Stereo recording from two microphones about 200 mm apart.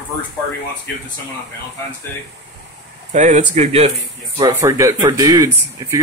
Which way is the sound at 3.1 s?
35° right (ahead or behind).